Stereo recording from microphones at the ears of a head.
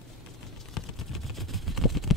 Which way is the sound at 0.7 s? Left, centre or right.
Left.